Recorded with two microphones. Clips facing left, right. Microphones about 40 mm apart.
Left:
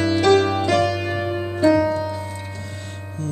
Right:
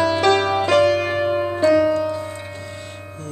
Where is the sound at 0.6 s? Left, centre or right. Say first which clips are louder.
Right 4 dB; right.